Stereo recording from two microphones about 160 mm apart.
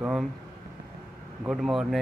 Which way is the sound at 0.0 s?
5° right (ahead or behind).